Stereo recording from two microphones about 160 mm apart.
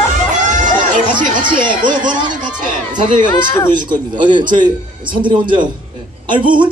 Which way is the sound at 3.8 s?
30° right (ahead or behind).